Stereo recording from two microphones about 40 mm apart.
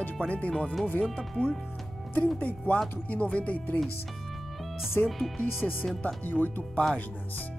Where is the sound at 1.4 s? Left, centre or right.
Left.